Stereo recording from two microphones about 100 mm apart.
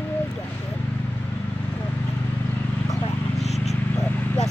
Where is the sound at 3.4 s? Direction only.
90° left.